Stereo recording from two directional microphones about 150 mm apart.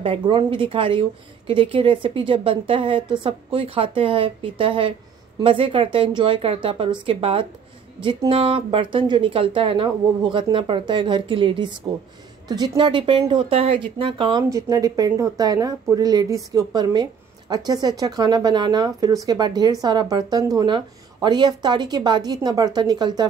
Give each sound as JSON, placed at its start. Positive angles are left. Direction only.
{"t": 0.0, "sound": "speech", "side_deg": -35}
{"t": 14.5, "sound": "speech", "side_deg": -25}